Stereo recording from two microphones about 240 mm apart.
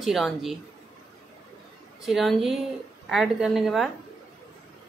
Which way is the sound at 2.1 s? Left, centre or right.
Centre.